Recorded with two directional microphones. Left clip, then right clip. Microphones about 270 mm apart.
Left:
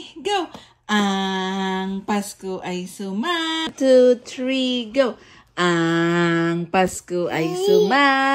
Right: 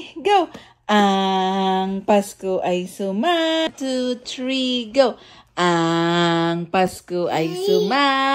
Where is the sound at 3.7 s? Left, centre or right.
Centre.